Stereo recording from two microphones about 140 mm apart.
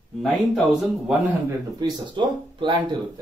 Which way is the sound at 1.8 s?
35° right (ahead or behind).